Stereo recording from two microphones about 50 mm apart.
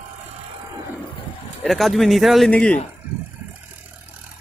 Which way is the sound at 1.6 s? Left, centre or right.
Centre.